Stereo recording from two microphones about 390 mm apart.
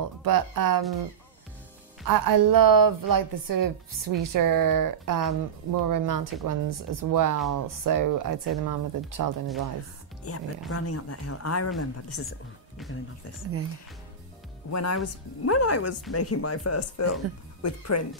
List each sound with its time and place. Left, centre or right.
0.2 s a woman's voice: right
2.0 s a woman's voice: right
10.3 s speech: left
14.7 s speech: left